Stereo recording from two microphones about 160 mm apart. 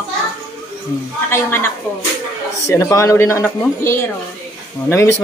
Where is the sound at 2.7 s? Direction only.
20° left (ahead or behind).